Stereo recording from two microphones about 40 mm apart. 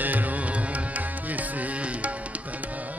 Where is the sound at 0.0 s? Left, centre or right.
Right.